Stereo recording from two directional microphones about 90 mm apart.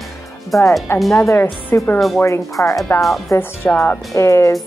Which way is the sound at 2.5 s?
35° left (ahead or behind).